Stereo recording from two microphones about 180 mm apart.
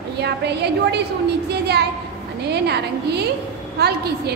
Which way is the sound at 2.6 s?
65° right (ahead or behind).